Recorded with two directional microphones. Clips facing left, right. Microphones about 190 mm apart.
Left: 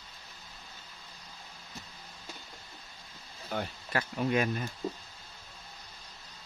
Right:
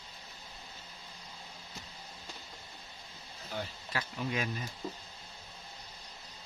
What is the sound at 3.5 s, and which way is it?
Speech, 55° left (ahead or behind).